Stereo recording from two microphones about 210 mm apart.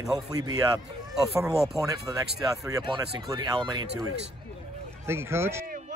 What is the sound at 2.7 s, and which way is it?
Speech, 15° right (ahead or behind).